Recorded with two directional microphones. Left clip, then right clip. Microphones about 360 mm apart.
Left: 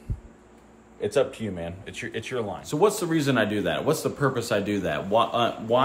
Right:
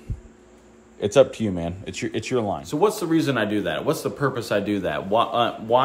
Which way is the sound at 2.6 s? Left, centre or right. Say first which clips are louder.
Left 3 dB; centre.